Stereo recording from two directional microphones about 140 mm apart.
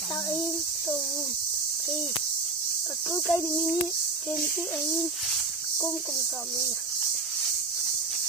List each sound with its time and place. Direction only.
0.3 s speech: 15° left (ahead or behind)
3.1 s cricket: 15° left (ahead or behind)